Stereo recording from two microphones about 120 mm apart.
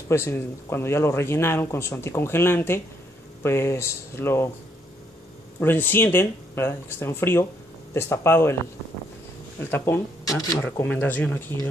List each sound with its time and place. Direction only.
0.1 s speech: 20° left (ahead or behind)
5.6 s speech: 15° left (ahead or behind)
9.6 s speech: 20° left (ahead or behind)
10.6 s speech: 15° left (ahead or behind)